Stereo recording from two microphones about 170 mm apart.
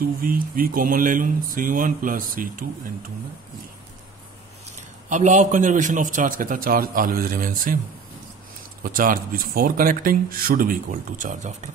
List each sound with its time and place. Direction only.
0.0 s speech: 60° right (ahead or behind)
5.1 s speech: 45° right (ahead or behind)
8.8 s speech: 55° right (ahead or behind)